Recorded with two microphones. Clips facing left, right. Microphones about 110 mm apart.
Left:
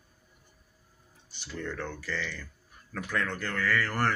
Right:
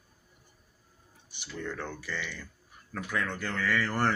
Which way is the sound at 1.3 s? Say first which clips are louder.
Left 1 dB; 15° right (ahead or behind).